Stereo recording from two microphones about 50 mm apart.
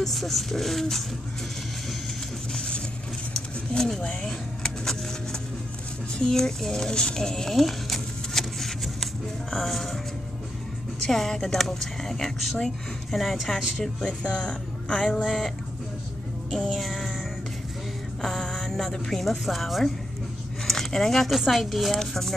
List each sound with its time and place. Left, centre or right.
0.0 s speech: centre
3.7 s a woman's voice: centre
4.2 s a sound: centre
6.1 s a woman's voice: centre
7.5 s a sound: centre
11.1 s a woman's voice: centre
14.2 s speech: centre
15.2 s speech: centre
16.4 s music: centre
18.2 s a sound: centre
19.4 s speech: centre
20.6 s a sound: centre
21.4 s a woman's voice: centre